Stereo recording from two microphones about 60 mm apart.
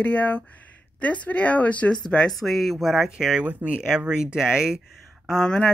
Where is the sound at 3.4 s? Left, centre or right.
Right.